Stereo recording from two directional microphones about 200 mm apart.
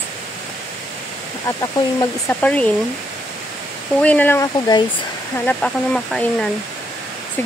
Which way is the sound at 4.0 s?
5° left (ahead or behind).